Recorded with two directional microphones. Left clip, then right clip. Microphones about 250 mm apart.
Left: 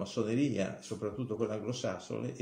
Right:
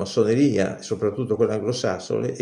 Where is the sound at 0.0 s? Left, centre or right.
Right.